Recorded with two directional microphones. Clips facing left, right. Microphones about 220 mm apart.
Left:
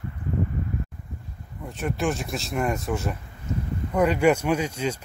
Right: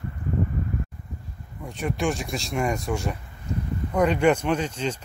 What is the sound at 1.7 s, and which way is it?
Speech, centre (ahead or behind).